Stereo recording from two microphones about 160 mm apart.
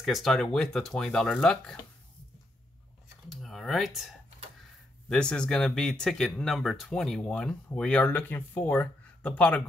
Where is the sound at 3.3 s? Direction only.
Centre (ahead or behind).